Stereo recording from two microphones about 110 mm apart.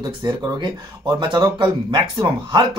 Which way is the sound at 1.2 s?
45° right (ahead or behind).